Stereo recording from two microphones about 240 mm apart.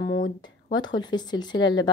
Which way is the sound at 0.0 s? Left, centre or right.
Left.